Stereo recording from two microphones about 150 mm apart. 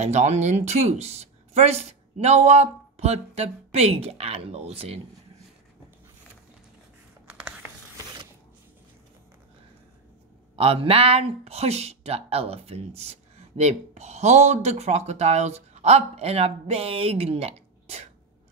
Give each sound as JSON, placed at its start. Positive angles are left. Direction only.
{"t": 0.0, "sound": "speech", "side_deg": -50}
{"t": 7.2, "sound": "a sound", "side_deg": -5}
{"t": 10.5, "sound": "speech", "side_deg": -40}